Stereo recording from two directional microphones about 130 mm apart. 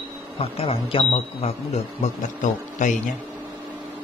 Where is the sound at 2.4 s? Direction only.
75° left (ahead or behind).